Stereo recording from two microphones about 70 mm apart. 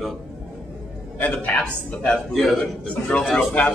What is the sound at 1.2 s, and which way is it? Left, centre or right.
Speech, left.